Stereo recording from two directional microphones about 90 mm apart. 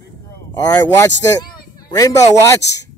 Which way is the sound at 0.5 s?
45° left (ahead or behind).